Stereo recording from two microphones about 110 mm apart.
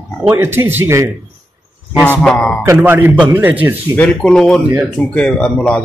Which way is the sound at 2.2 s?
5° left (ahead or behind).